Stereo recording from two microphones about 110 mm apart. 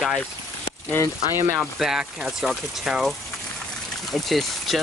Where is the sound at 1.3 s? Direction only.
25° right (ahead or behind).